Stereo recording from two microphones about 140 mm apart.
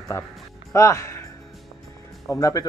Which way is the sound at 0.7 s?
20° left (ahead or behind).